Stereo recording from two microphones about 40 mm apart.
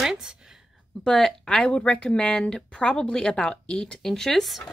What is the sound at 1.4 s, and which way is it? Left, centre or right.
Speech, left.